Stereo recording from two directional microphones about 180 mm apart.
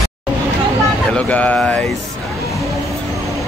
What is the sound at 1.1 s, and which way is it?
Speech, 5° left (ahead or behind).